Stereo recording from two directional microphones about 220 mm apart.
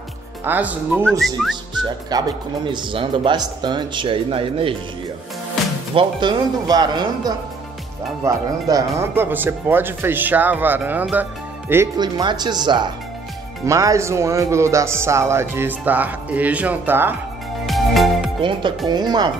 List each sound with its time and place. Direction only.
0.5 s speech: 10° right (ahead or behind)
2.0 s speech: 20° right (ahead or behind)
5.9 s speech: 20° right (ahead or behind)
17.6 s music: centre (ahead or behind)
18.4 s speech: 20° right (ahead or behind)